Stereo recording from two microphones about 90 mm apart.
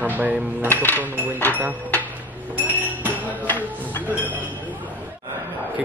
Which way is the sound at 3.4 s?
20° left (ahead or behind).